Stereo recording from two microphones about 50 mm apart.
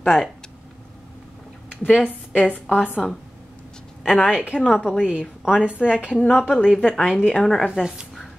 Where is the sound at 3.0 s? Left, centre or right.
Centre.